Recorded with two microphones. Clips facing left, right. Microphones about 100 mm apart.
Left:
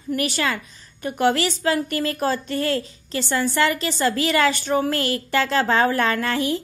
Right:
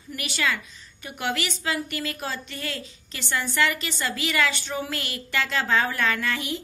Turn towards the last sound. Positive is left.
turn(degrees=40)  # may be behind; listen again after turning